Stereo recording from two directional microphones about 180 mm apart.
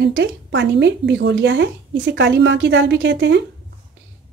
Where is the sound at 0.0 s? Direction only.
75° right (ahead or behind).